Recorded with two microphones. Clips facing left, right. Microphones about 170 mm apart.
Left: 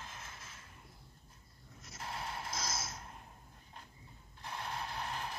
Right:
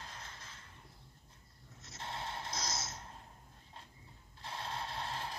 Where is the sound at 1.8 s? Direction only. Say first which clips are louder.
Even; 25° right (ahead or behind).